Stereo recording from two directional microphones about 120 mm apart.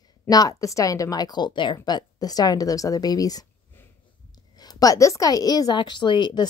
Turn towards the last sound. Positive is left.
turn(degrees=40)  # may be behind; listen again after turning